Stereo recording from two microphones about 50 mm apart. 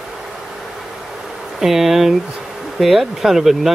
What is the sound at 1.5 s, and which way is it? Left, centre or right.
Speech, centre.